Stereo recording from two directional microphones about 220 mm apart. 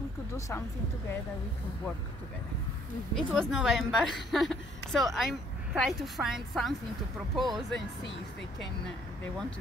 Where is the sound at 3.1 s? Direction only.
Centre (ahead or behind).